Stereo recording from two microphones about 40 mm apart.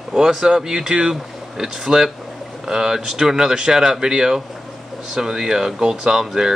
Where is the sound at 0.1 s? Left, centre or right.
Centre.